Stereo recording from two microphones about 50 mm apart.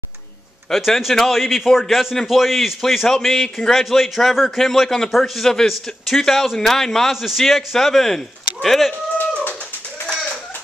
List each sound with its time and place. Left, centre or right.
0.7 s a man's voice: centre
3.1 s a man's voice: centre
9.2 s bird: left